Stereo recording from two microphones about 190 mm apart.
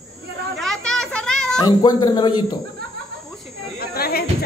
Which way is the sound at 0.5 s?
Centre (ahead or behind).